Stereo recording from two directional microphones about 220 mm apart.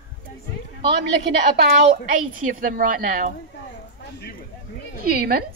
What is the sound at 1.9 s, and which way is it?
A woman's voice, 35° right (ahead or behind).